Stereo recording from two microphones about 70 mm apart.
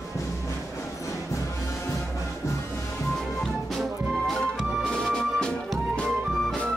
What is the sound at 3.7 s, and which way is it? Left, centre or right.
Music, centre.